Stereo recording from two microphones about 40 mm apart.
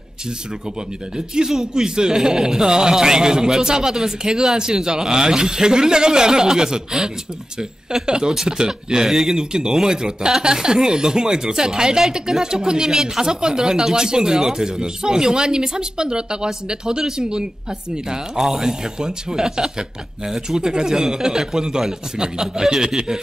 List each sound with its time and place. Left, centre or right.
1.1 s speech: centre